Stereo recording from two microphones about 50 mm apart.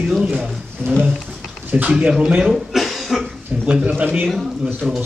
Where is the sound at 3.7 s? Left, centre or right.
Right.